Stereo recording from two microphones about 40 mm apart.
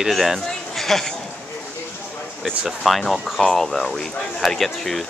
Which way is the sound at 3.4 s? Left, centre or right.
Centre.